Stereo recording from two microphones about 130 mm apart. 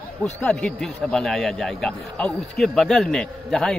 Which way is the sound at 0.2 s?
10° left (ahead or behind).